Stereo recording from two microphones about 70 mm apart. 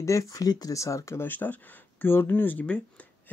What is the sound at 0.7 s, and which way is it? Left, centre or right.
Speech, left.